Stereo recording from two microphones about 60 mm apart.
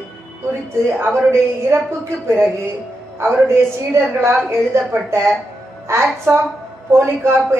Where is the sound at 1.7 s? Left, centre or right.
Right.